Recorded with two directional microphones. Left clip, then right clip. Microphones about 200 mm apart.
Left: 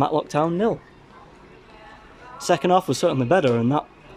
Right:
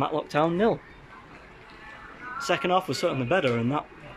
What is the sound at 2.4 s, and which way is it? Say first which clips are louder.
Speech: left 6 dB; 15° left (ahead or behind).